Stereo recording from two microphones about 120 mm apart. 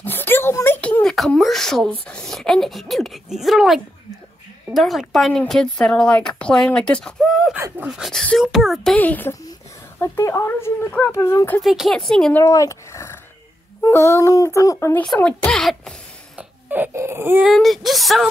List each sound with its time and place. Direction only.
0.0 s a sound: 15° left (ahead or behind)
1.1 s speech: centre (ahead or behind)
8.9 s speech: 15° left (ahead or behind)
11.1 s speech: 30° left (ahead or behind)
11.6 s speech: centre (ahead or behind)
12.4 s a sound: 25° left (ahead or behind)
13.8 s speech: 25° left (ahead or behind)
15.2 s speech: 5° left (ahead or behind)
16.3 s speech: 15° right (ahead or behind)
17.4 s speech: centre (ahead or behind)